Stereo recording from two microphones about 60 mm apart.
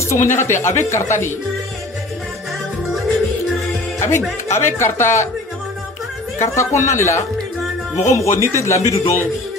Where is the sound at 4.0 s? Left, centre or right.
Left.